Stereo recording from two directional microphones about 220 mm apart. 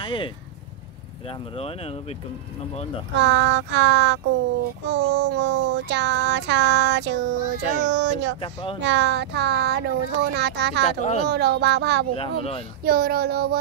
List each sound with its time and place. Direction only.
0.0 s speech: 20° left (ahead or behind)
1.6 s speech: 25° left (ahead or behind)
3.2 s child singing: 55° right (ahead or behind)
8.4 s speech: 25° left (ahead or behind)
8.8 s child singing: 55° right (ahead or behind)
11.0 s speech: 30° left (ahead or behind)
11.2 s child singing: 50° right (ahead or behind)
12.2 s speech: 25° left (ahead or behind)
12.8 s child singing: 45° right (ahead or behind)